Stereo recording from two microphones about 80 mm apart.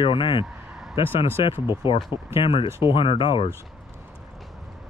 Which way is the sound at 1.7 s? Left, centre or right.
Left.